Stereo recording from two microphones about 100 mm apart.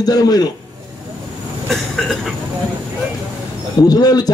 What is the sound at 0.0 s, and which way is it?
Speech, 40° left (ahead or behind).